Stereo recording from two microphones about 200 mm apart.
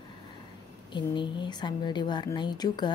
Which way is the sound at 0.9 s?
25° left (ahead or behind).